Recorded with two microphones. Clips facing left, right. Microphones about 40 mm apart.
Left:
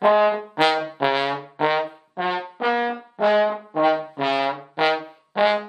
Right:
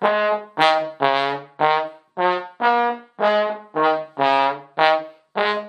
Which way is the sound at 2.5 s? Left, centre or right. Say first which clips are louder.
Right 4 dB; right.